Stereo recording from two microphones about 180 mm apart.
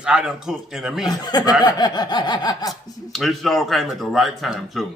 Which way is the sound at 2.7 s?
Centre (ahead or behind).